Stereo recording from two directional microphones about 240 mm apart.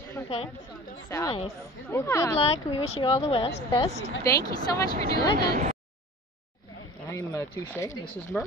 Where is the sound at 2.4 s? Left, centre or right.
Left.